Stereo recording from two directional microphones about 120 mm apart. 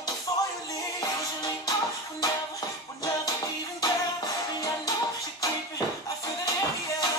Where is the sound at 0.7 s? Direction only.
30° left (ahead or behind).